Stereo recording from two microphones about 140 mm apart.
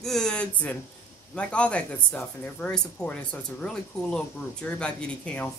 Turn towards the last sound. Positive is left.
turn(degrees=10)  # may be behind; listen again after turning